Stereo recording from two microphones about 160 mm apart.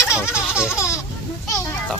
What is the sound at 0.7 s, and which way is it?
Laughter, 15° left (ahead or behind).